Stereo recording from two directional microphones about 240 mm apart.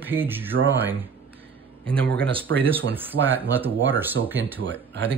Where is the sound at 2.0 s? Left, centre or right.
Centre.